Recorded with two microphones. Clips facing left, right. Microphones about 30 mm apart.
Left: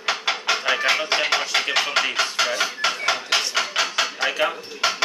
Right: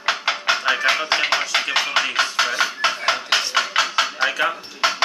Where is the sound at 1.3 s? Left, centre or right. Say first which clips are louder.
Right 1 dB; centre.